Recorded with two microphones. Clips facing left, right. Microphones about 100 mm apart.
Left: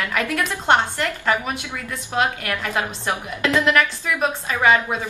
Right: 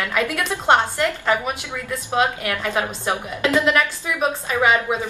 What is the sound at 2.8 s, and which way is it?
A woman's voice, 20° right (ahead or behind).